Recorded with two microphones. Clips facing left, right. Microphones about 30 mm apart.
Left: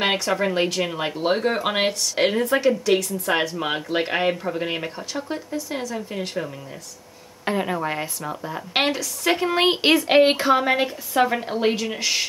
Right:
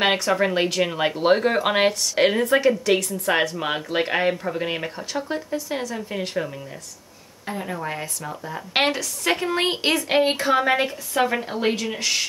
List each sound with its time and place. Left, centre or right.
0.0 s speech: centre
7.5 s a woman's voice: left
8.5 s speech: centre
9.5 s a woman's voice: centre
10.4 s speech: centre